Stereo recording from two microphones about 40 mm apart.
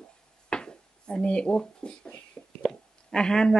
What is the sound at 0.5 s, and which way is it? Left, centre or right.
Speech, left.